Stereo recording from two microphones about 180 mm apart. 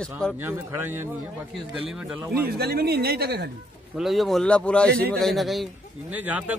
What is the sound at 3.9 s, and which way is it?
A man's voice, centre (ahead or behind).